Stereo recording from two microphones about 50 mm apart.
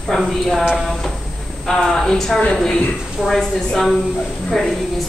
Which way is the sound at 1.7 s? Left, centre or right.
Centre.